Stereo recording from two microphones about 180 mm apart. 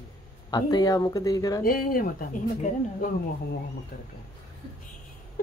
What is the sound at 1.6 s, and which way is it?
Speech, 50° left (ahead or behind).